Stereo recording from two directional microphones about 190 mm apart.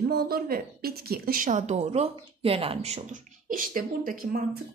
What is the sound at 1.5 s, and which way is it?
Speech, 35° right (ahead or behind).